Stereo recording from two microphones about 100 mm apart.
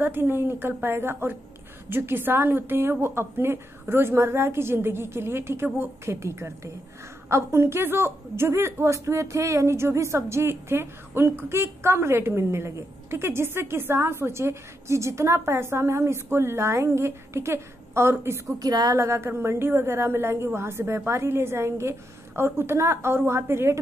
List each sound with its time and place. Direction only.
0.0 s a woman's voice: 20° right (ahead or behind)
18.6 s a woman's voice: 40° right (ahead or behind)
18.9 s a woman's voice: 25° right (ahead or behind)